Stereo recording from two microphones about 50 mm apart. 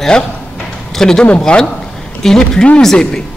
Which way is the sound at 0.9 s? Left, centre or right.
Centre.